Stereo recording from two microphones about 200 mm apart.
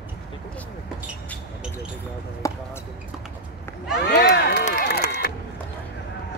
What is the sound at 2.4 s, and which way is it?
Basketball bounce, 15° left (ahead or behind).